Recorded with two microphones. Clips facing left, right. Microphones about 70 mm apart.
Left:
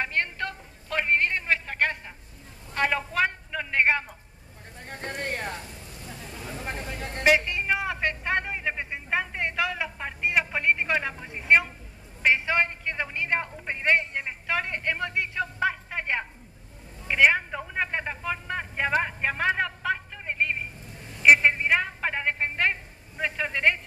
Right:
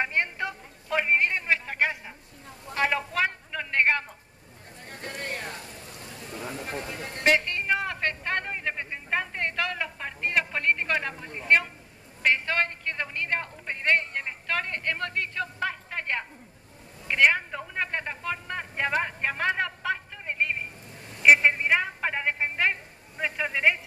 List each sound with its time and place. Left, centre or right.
0.0 s a sound: centre
4.8 s boat: left
7.2 s a man's voice: centre